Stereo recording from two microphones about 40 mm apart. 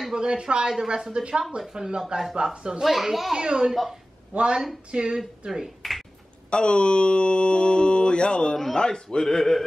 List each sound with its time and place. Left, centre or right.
0.1 s speech: centre
2.8 s a child's voice: centre
3.3 s speech: centre
4.3 s a woman's voice: right
4.9 s speech: right
5.8 s a sound: centre
6.5 s mantra: left
8.7 s speech: centre